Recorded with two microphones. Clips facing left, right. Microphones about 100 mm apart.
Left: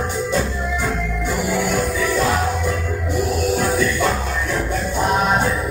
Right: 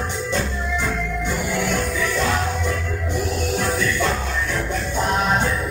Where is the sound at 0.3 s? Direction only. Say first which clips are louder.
Left 3 dB; 10° left (ahead or behind).